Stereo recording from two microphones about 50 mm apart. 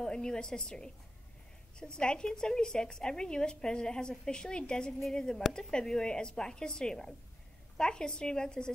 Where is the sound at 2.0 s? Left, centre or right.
Centre.